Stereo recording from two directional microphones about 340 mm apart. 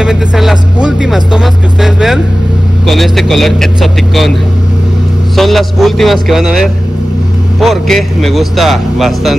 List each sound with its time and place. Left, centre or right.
0.0 s speech: centre
5.3 s speech: centre